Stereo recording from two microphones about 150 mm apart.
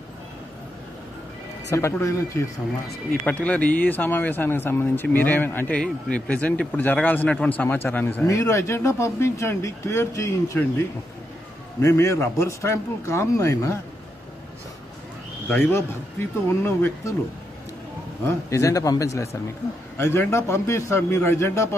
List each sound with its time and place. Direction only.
1.7 s speech: 20° left (ahead or behind)
11.8 s a man's voice: 20° left (ahead or behind)
15.4 s a man's voice: 10° left (ahead or behind)
18.2 s a man's voice: 20° left (ahead or behind)